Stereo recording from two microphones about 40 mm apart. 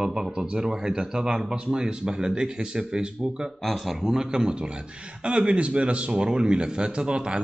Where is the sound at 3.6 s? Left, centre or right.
Centre.